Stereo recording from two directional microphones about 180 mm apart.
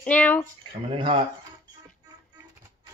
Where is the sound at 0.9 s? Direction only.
30° right (ahead or behind).